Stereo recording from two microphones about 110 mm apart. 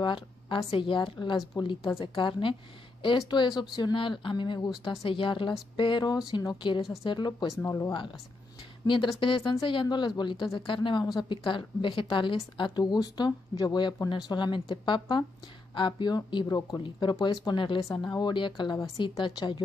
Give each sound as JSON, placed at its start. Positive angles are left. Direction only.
{"t": 0.0, "sound": "a woman's voice", "side_deg": 50}
{"t": 7.6, "sound": "speech", "side_deg": 25}
{"t": 8.8, "sound": "a woman's voice", "side_deg": 45}